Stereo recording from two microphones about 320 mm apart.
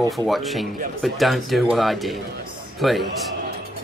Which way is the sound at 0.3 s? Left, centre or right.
Centre.